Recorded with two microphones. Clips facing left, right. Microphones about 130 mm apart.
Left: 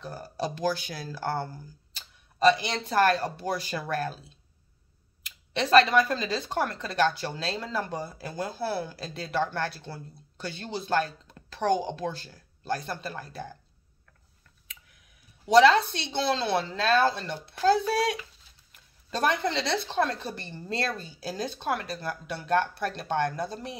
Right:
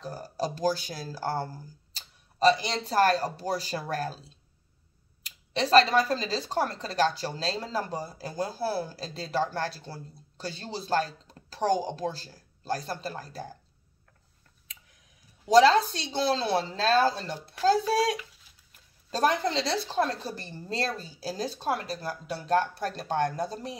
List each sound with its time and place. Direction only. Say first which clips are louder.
0.0 s speech: right 1 dB; 35° right (ahead or behind)
5.2 s speech: right 1 dB; 35° right (ahead or behind)
15.5 s speech: even; 35° right (ahead or behind)
20.4 s speech: left 1 dB; 10° right (ahead or behind)
21.0 s speech: even; 35° right (ahead or behind)